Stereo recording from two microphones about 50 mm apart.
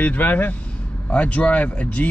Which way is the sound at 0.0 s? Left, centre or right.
Left.